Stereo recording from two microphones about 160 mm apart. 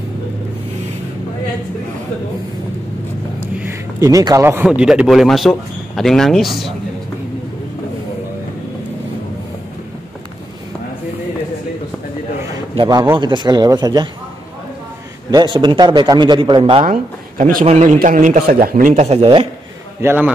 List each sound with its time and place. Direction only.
4.0 s a man's voice: 20° right (ahead or behind); by 6.7 s centre (ahead or behind)
12.5 s a sound: 25° right (ahead or behind)
13.2 s a man's voice: 30° right (ahead or behind)
15.3 s a man's voice: 30° right (ahead or behind)
16.8 s speech: 60° right (ahead or behind)
17.6 s a man's voice: 45° right (ahead or behind)
17.9 s a man's voice: 55° right (ahead or behind); by 19.4 s 40° right (ahead or behind)
20.0 s a man's voice: 15° right (ahead or behind)